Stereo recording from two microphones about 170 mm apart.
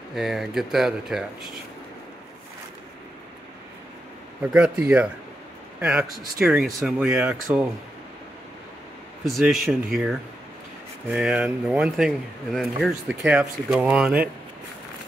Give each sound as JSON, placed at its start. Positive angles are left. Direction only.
{"t": 0.1, "sound": "speech", "side_deg": 0}
{"t": 4.5, "sound": "speech", "side_deg": -10}
{"t": 9.2, "sound": "speech", "side_deg": 0}